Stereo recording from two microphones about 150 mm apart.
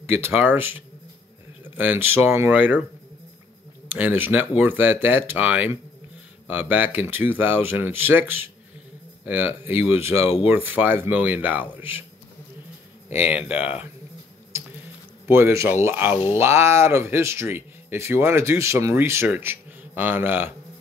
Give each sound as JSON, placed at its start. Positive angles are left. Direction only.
{"t": 0.0, "sound": "speech", "side_deg": -15}
{"t": 3.9, "sound": "speech", "side_deg": -15}
{"t": 13.1, "sound": "speech", "side_deg": -10}
{"t": 15.2, "sound": "speech", "side_deg": -15}